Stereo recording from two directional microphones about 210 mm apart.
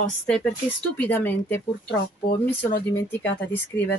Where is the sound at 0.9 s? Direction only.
10° left (ahead or behind).